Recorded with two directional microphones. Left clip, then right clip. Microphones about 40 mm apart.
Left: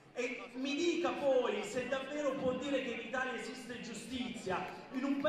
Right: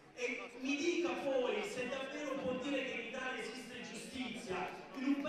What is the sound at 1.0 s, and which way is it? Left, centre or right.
A man's voice, right.